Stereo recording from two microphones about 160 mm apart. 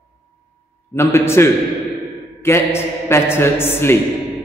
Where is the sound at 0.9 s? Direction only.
15° left (ahead or behind).